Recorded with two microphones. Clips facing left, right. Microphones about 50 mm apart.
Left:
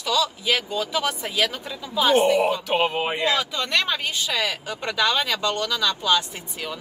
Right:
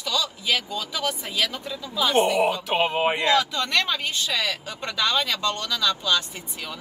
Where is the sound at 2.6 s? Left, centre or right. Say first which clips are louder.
Left 1 dB; centre.